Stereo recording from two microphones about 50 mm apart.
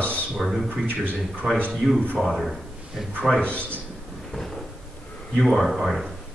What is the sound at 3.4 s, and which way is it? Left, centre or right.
Speech, left.